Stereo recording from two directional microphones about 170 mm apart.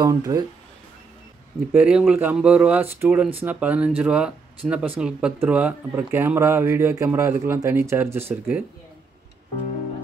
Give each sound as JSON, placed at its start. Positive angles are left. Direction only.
{"t": 0.0, "sound": "speech", "side_deg": -20}
{"t": 1.7, "sound": "speech", "side_deg": -5}